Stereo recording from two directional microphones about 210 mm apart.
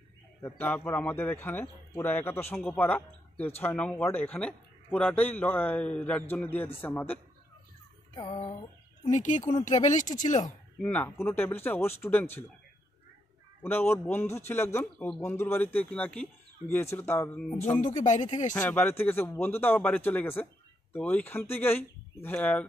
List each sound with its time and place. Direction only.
0.4 s a man's voice: 10° left (ahead or behind)
8.3 s music: 30° left (ahead or behind)
9.1 s speech: 35° left (ahead or behind)
10.8 s a man's voice: 10° left (ahead or behind)
13.6 s a man's voice: 10° left (ahead or behind)
17.8 s speech: 35° left (ahead or behind)
18.5 s a man's voice: 10° left (ahead or behind)